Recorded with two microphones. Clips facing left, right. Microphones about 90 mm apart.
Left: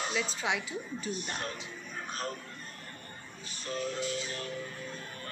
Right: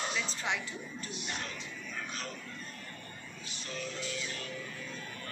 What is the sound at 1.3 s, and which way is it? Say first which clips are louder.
Speech: left 3 dB; 45° left (ahead or behind).